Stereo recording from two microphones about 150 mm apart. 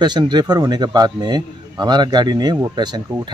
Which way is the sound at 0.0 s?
30° right (ahead or behind).